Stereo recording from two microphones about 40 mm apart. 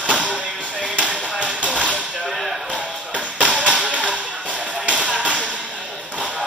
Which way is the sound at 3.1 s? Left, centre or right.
Right.